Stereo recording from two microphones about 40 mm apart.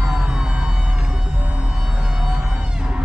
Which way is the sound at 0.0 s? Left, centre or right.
Centre.